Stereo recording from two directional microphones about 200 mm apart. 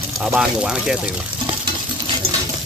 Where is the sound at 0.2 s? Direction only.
5° right (ahead or behind).